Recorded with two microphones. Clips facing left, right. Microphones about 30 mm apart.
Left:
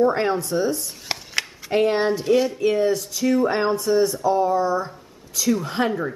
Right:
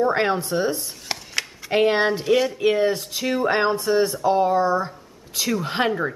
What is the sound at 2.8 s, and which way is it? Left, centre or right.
Speech, right.